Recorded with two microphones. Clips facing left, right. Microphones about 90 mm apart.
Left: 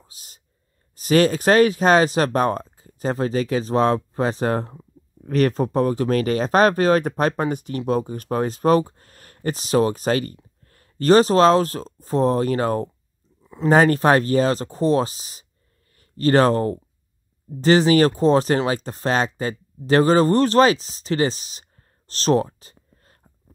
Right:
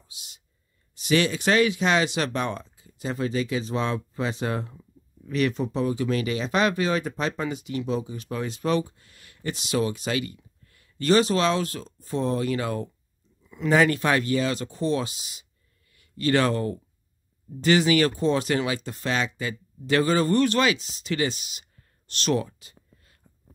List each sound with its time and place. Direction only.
0.0 s speech: 40° left (ahead or behind)